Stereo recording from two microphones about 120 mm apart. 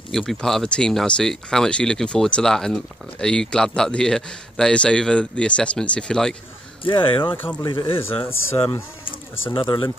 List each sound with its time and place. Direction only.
0.1 s speech: centre (ahead or behind)
6.8 s speech: 45° left (ahead or behind)
7.3 s speech: 15° left (ahead or behind)
7.6 s speech: 45° left (ahead or behind)
9.0 s speech: 45° left (ahead or behind)